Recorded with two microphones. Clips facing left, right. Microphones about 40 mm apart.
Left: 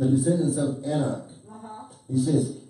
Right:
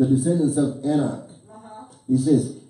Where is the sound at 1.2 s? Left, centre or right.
Centre.